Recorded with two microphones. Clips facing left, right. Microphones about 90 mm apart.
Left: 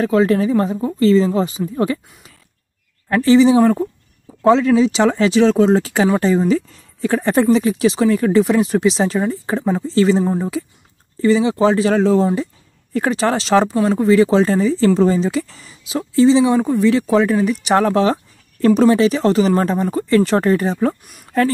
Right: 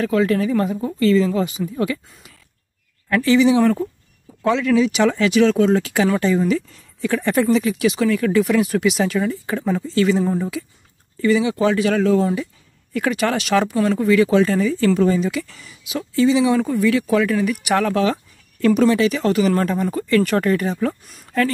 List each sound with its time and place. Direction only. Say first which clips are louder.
0.0 s speech: left 3 dB; 30° left (ahead or behind)
3.1 s speech: left 4 dB; 30° left (ahead or behind)
3.5 s speech: left 3 dB; 20° left (ahead or behind)
4.4 s speech: left 4 dB; 30° left (ahead or behind)